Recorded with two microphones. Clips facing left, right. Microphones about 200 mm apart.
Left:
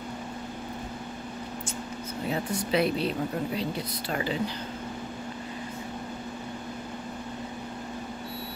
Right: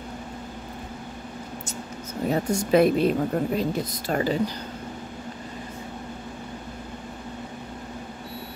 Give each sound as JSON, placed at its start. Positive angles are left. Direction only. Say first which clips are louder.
{"t": 2.2, "sound": "a woman's voice", "louder": "right 6 dB", "side_deg": -45}